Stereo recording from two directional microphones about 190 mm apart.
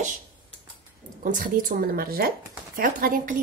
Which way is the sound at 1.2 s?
45° right (ahead or behind).